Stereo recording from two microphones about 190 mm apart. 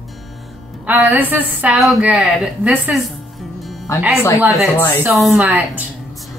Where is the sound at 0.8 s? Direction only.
10° right (ahead or behind).